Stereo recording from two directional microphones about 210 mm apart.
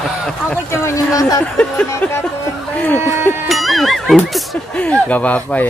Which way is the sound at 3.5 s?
Centre (ahead or behind).